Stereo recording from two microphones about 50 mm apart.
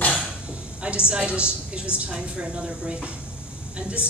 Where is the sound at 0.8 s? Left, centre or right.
Right.